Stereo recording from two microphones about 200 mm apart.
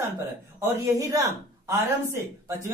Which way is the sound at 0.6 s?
15° right (ahead or behind).